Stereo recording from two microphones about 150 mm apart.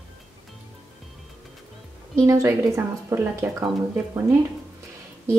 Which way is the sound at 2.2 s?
20° right (ahead or behind).